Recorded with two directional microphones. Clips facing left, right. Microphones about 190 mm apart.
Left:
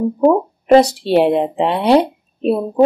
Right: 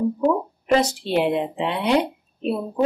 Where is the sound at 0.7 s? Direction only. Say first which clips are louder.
Left 9 dB; 35° left (ahead or behind).